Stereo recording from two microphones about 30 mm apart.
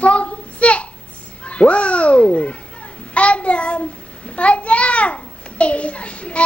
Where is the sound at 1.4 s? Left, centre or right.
Left.